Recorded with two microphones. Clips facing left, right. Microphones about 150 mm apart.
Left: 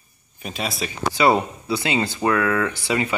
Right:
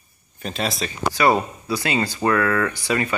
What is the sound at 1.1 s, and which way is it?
Speech, 20° left (ahead or behind).